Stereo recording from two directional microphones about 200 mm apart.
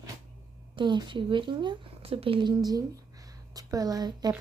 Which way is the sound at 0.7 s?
20° right (ahead or behind).